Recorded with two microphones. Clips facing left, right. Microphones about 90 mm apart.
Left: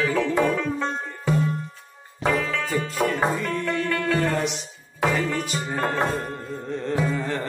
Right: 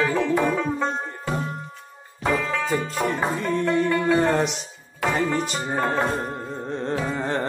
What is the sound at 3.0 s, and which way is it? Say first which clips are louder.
Music: left 1 dB; 20° right (ahead or behind).